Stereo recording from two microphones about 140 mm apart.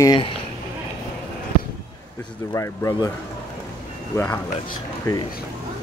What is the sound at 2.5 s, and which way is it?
Speech, 20° left (ahead or behind).